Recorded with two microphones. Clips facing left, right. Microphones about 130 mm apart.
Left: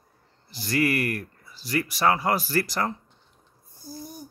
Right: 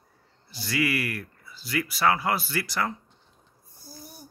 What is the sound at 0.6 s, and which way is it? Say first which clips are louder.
Speech: left 3 dB; 45° left (ahead or behind).